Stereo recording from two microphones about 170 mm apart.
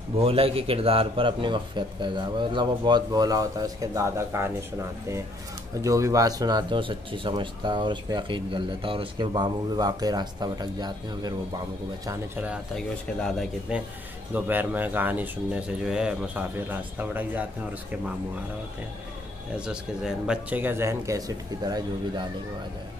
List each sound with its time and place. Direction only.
0.2 s a man's voice: 35° right (ahead or behind)
12.1 s speech: 10° right (ahead or behind)
12.7 s speech: centre (ahead or behind)
19.5 s a man's voice: 5° right (ahead or behind); by 22.2 s 25° right (ahead or behind)